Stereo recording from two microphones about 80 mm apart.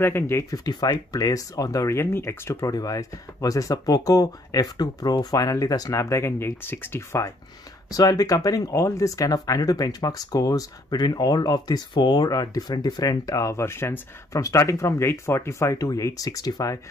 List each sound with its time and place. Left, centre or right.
0.0 s speech: left
0.7 s speech: left
2.0 s speech: left
2.6 s speech: left
7.9 s speech: left
14.3 s speech: left